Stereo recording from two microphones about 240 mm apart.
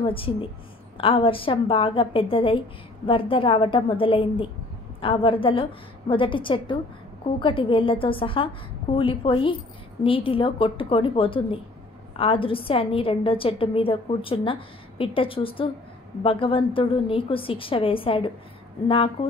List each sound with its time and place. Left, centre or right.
0.0 s a woman's voice: left